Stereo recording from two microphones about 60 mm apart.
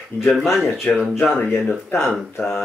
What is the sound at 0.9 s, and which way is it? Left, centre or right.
Speech, left.